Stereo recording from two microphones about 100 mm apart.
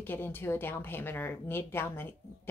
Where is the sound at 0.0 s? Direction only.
20° left (ahead or behind).